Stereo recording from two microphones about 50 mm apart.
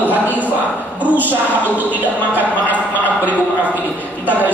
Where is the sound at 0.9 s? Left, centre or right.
Right.